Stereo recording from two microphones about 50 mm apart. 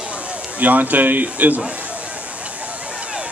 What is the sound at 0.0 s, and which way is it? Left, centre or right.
A man's voice, right.